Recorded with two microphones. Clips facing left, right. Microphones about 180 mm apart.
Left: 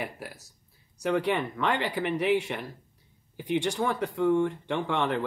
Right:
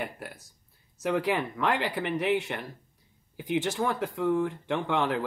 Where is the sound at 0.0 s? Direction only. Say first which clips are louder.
Even; centre (ahead or behind).